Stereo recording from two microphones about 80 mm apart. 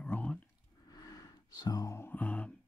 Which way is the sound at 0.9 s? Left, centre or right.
Left.